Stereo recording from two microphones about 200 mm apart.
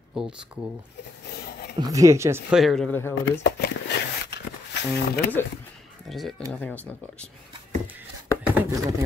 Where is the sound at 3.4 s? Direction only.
55° left (ahead or behind).